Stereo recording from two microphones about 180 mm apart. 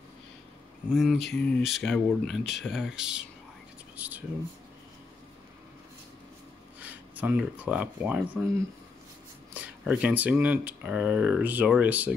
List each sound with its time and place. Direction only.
0.9 s speech: centre (ahead or behind)
3.9 s a sound: 10° right (ahead or behind)
6.8 s speech: 10° right (ahead or behind)
9.5 s speech: 5° right (ahead or behind)